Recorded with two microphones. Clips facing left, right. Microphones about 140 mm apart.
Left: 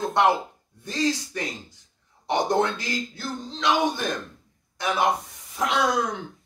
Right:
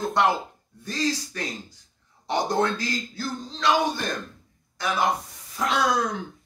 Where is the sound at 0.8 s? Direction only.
20° left (ahead or behind).